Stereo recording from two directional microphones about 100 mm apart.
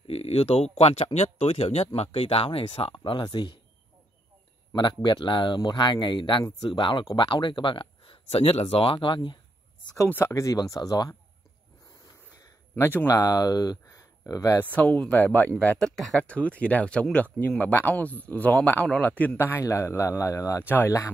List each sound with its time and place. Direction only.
0.0 s speech: 80° left
2.0 s speech: 75° left (ahead or behind); by 3.5 s 55° left (ahead or behind)
4.7 s speech: 50° left (ahead or behind)
10.0 s speech: 25° left (ahead or behind)
12.0 s a sound: 35° left (ahead or behind)
13.0 s speech: 35° left (ahead or behind)
14.6 s speech: 15° left (ahead or behind); by 20.6 s 35° left (ahead or behind)
20.6 s speech: 20° left (ahead or behind)